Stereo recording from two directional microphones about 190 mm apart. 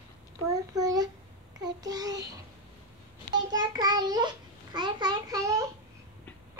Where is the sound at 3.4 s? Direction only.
20° right (ahead or behind).